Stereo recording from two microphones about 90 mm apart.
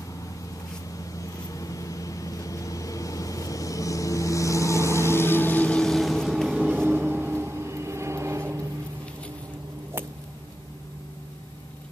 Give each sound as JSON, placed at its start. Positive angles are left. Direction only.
{"t": 0.9, "sound": "vehicle", "side_deg": 40}
{"t": 5.8, "sound": "vehicle", "side_deg": 5}
{"t": 6.7, "sound": "vehicle", "side_deg": -20}